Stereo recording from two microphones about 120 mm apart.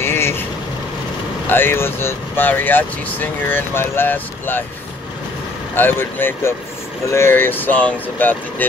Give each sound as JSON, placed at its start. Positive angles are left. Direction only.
{"t": 0.0, "sound": "vehicle", "side_deg": 20}
{"t": 1.5, "sound": "speech", "side_deg": 15}
{"t": 5.8, "sound": "speech", "side_deg": 15}